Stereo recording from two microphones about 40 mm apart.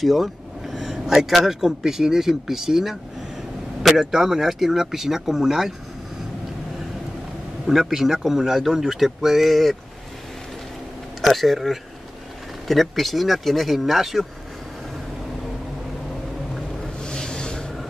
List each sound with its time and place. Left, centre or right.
0.0 s speech: centre
7.6 s speech: centre
11.1 s speech: centre
17.0 s a sound: centre